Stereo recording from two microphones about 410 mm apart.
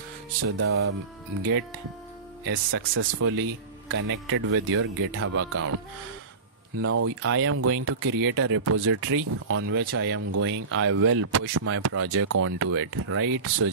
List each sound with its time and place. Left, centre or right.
0.4 s speech: right
2.4 s speech: right
6.8 s speech: right